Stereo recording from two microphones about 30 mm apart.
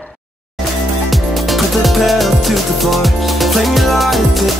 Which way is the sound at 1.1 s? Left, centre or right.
Centre.